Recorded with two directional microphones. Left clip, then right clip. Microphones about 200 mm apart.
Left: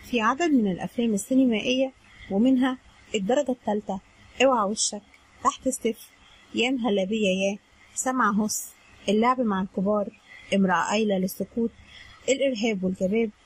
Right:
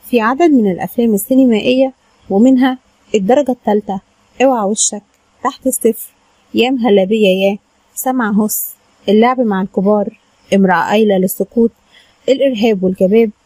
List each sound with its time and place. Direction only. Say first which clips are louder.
0.1 s speech: right 12 dB; 40° right (ahead or behind)
6.6 s speech: right 13 dB; 45° right (ahead or behind)